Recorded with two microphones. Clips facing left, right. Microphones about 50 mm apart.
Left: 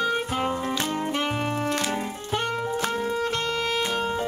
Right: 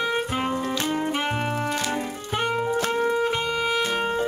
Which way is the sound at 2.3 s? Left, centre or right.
Centre.